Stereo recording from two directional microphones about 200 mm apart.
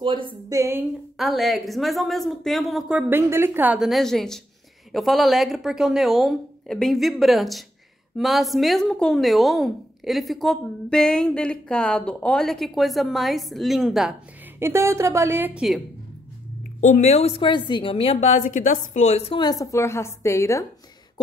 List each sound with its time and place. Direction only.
0.0 s a woman's voice: 25° right (ahead or behind)
1.1 s speech: centre (ahead or behind)
14.6 s a woman's voice: 15° right (ahead or behind)
16.8 s a woman's voice: 35° left (ahead or behind); by 20.6 s 15° left (ahead or behind)